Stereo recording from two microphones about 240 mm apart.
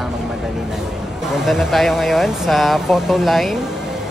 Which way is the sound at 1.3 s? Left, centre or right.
Centre.